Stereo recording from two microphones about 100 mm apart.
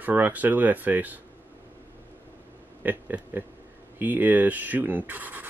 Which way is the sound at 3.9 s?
20° right (ahead or behind).